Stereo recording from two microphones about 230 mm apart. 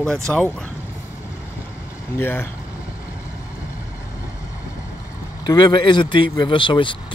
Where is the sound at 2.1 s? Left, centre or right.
Centre.